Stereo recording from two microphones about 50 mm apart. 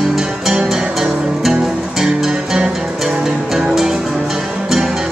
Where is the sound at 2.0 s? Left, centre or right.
Centre.